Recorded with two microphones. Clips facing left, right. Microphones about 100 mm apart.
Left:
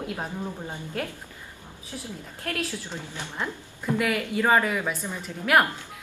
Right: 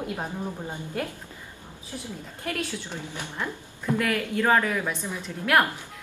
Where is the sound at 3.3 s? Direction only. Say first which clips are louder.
Left 2 dB; 10° left (ahead or behind).